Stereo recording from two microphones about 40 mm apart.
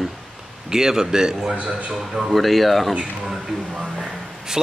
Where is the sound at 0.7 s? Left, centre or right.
Centre.